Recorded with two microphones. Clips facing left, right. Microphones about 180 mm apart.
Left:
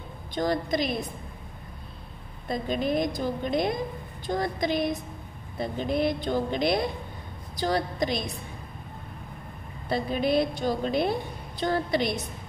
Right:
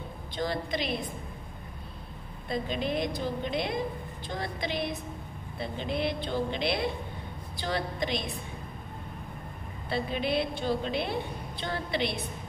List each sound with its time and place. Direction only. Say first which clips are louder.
0.3 s a woman's voice: left 5 dB; 45° left (ahead or behind)
2.4 s a woman's voice: left 3 dB; 40° left (ahead or behind)
9.8 s a woman's voice: left 4 dB; 40° left (ahead or behind)